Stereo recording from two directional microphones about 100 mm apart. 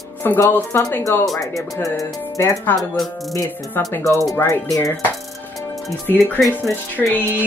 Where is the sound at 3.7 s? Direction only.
25° left (ahead or behind).